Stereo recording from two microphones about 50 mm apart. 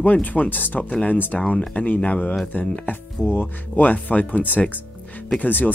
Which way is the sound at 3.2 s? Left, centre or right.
Left.